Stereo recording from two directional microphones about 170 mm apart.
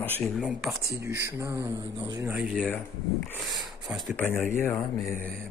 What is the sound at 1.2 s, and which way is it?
Speech, 15° right (ahead or behind).